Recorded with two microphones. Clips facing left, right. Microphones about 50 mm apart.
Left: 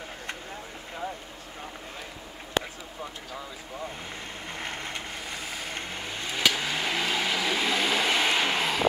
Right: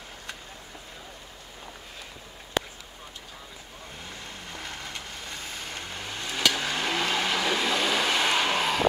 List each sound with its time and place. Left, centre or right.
4.5 s vehicle: left; by 8.8 s centre